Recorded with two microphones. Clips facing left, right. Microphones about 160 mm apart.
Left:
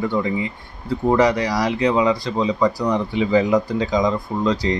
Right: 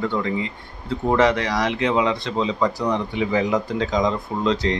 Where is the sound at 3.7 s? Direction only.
5° left (ahead or behind).